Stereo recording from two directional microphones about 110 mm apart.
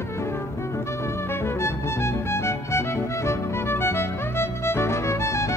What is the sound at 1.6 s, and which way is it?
Music, 25° left (ahead or behind).